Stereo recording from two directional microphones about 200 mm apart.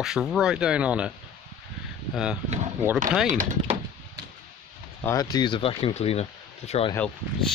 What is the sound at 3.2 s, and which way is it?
Speech, 40° right (ahead or behind).